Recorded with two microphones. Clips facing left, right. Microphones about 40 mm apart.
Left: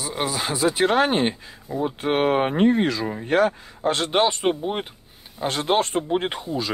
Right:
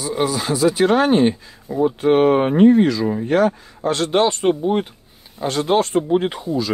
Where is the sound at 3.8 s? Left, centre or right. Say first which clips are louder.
Right 3 dB; left.